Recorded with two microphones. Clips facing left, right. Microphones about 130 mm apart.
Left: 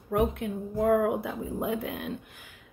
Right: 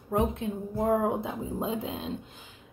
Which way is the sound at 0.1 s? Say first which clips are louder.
Left 1 dB; 20° right (ahead or behind).